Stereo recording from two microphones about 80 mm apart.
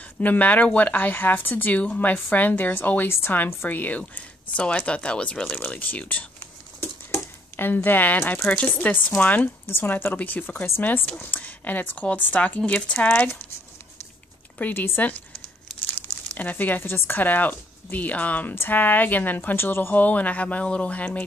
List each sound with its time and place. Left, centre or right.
0.2 s speech: left
5.6 s a sound: left
8.4 s speech: centre
9.7 s speech: left
14.6 s speech: left
16.3 s speech: left